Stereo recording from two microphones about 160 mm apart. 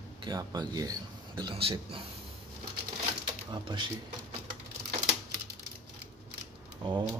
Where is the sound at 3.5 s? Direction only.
30° right (ahead or behind).